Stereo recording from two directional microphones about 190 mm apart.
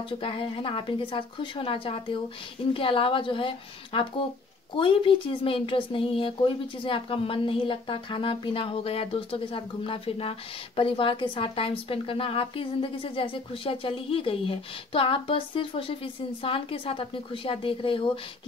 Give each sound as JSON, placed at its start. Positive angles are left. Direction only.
{"t": 0.2, "sound": "a woman's voice", "side_deg": 25}